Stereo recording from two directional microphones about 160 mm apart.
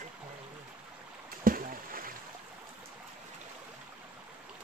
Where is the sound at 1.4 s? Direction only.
60° right (ahead or behind).